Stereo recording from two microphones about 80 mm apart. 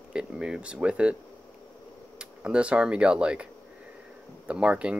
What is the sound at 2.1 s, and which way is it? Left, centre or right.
Speech, centre.